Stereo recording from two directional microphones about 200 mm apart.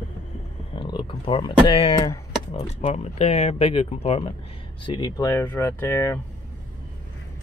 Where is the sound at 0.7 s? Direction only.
25° left (ahead or behind).